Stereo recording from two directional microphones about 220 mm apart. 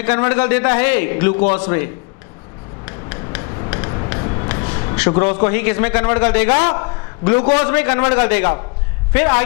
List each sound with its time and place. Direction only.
0.0 s a man's voice: 10° left (ahead or behind)
2.8 s rub: 15° left (ahead or behind)
3.7 s a sound: 20° left (ahead or behind)
6.5 s a man's voice: 20° left (ahead or behind)
7.6 s a man's voice: 10° left (ahead or behind)